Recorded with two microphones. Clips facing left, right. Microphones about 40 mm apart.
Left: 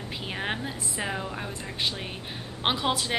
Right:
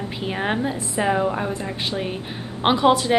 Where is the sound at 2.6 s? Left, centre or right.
Centre.